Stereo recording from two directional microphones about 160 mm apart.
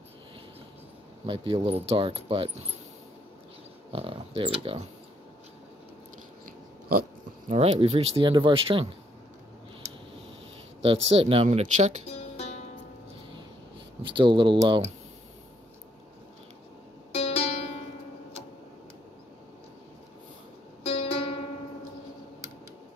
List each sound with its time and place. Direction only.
1.2 s speech: 30° right (ahead or behind)
3.9 s speech: 35° right (ahead or behind)
7.4 s speech: 40° right (ahead or behind)
10.8 s speech: 40° right (ahead or behind)
12.1 s music: 40° left (ahead or behind)
14.0 s speech: 30° right (ahead or behind)
17.1 s music: 40° left (ahead or behind)
20.8 s music: 35° left (ahead or behind)